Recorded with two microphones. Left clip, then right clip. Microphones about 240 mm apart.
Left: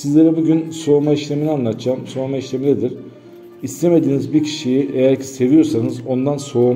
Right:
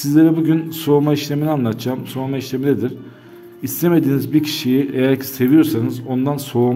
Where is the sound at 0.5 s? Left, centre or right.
Right.